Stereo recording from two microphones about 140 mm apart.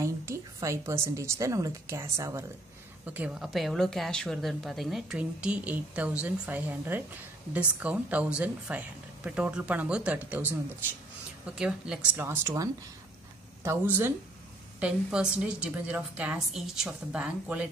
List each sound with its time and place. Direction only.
0.0 s a woman's voice: 20° right (ahead or behind)
3.1 s a woman's voice: 10° right (ahead or behind)
12.2 s speech: 15° right (ahead or behind)
13.7 s speech: 15° right (ahead or behind)